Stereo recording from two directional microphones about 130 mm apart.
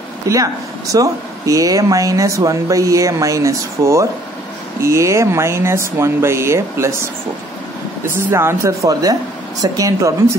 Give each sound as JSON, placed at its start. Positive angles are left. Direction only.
{"t": 0.3, "sound": "speech", "side_deg": -25}
{"t": 8.3, "sound": "speech", "side_deg": -20}